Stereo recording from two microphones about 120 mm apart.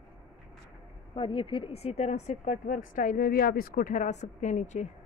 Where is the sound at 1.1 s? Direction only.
45° left (ahead or behind); by 4.8 s 75° left (ahead or behind).